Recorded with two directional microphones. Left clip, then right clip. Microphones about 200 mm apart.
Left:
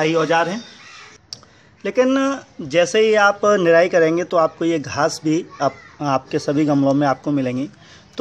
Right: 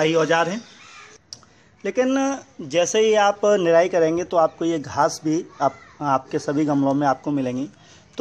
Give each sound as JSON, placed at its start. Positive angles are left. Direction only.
{"t": 0.0, "sound": "speech", "side_deg": -20}
{"t": 1.3, "sound": "speech", "side_deg": -5}